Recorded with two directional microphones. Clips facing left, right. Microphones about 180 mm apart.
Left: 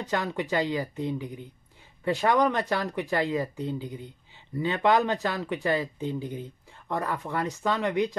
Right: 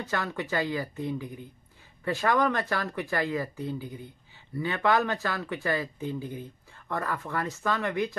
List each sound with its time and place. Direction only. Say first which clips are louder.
0.0 s speech: left 3 dB; 20° left (ahead or behind)